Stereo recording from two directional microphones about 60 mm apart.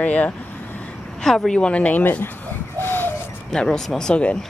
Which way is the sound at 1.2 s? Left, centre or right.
Centre.